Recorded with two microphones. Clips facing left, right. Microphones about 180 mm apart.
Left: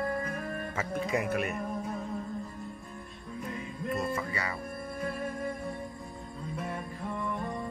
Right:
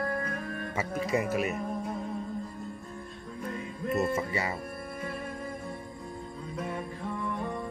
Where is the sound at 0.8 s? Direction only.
Centre (ahead or behind).